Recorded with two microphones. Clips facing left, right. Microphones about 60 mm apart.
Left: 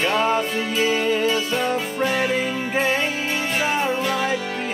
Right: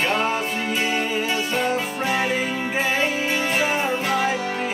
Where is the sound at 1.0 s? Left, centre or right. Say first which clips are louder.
Left 3 dB; centre.